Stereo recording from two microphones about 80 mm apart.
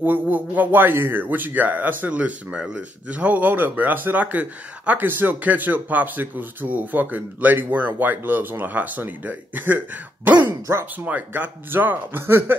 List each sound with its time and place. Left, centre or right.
0.0 s speech: right